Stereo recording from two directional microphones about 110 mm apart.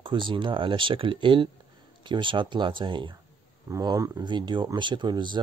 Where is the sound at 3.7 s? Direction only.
30° right (ahead or behind).